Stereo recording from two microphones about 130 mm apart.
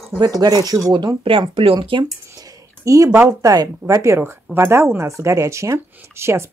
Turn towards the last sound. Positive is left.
turn(degrees=-20)  # may be behind; listen again after turning